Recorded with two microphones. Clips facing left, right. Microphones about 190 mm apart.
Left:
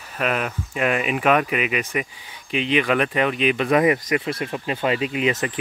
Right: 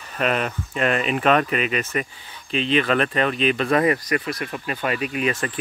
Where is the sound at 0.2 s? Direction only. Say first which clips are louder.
Right 1 dB; 5° left (ahead or behind).